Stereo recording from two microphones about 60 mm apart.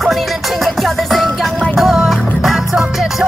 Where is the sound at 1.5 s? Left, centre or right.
Left.